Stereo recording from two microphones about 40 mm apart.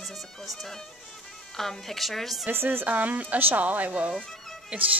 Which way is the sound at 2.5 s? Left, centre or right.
Right.